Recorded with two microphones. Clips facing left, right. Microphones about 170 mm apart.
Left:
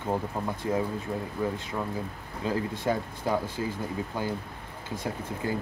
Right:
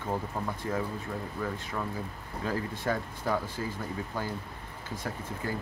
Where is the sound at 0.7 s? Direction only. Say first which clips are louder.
Left 7 dB; 20° left (ahead or behind).